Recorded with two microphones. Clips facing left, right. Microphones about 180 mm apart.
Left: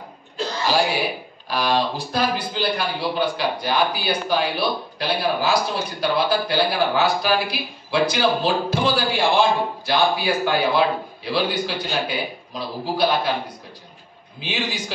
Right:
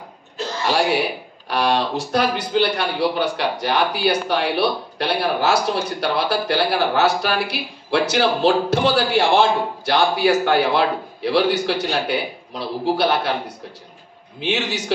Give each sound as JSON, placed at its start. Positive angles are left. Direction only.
{"t": 1.5, "sound": "a man's voice", "side_deg": -75}
{"t": 14.4, "sound": "a man's voice", "side_deg": -70}